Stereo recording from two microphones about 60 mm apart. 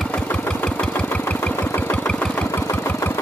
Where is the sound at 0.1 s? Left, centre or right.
Left.